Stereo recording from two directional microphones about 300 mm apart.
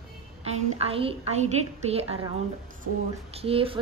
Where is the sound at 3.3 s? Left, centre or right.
Centre.